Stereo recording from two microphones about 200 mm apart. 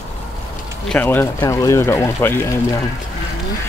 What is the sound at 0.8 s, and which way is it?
Speech, 5° left (ahead or behind).